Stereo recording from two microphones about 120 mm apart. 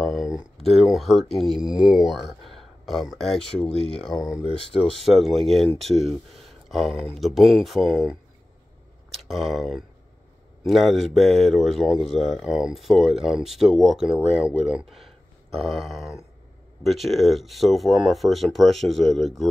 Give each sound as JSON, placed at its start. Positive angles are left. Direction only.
{"t": 0.0, "sound": "a sound", "side_deg": 0}
{"t": 0.7, "sound": "speech", "side_deg": 0}
{"t": 4.4, "sound": "speech", "side_deg": 50}
{"t": 4.7, "sound": "speech", "side_deg": 5}
{"t": 9.3, "sound": "speech", "side_deg": 0}